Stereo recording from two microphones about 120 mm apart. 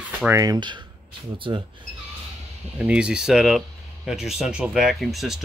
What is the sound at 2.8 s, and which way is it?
Speech, 10° right (ahead or behind).